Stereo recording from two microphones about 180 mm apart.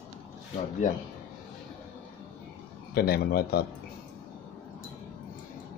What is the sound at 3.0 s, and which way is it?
Speech, 60° left (ahead or behind).